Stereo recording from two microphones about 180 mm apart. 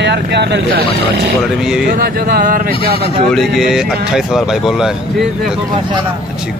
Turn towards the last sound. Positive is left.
turn(degrees=0)  # may be behind; listen again after turning